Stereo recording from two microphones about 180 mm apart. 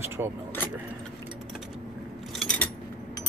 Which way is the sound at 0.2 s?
15° right (ahead or behind).